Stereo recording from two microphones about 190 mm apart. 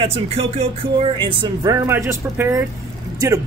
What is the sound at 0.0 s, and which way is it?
Speech, 30° right (ahead or behind).